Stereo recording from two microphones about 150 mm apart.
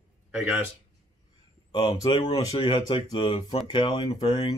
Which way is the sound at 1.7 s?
30° left (ahead or behind).